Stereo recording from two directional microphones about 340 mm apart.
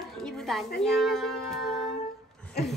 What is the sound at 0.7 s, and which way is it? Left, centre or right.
Child singing, centre.